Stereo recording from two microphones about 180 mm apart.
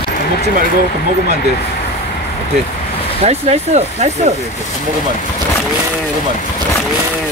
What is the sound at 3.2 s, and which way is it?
Speech, 35° right (ahead or behind).